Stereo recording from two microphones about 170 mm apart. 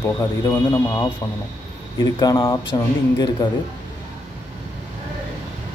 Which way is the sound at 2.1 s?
25° left (ahead or behind).